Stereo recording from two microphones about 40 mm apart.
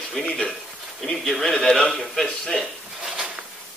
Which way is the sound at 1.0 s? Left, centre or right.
Centre.